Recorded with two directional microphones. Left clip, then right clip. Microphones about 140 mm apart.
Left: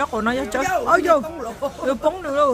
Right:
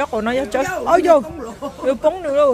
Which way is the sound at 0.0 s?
10° right (ahead or behind).